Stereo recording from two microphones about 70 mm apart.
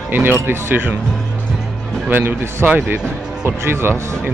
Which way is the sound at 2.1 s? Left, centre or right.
Right.